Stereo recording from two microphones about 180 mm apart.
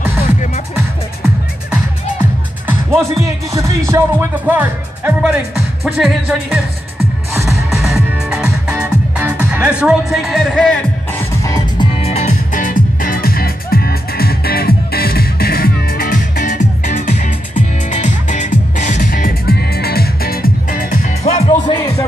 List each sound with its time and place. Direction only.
2.7 s music: 15° right (ahead or behind)
4.5 s speech: 10° right (ahead or behind)
7.4 s music: centre (ahead or behind)
11.4 s music: 25° left (ahead or behind); by 21.0 s 55° left (ahead or behind)
21.2 s music: 35° left (ahead or behind)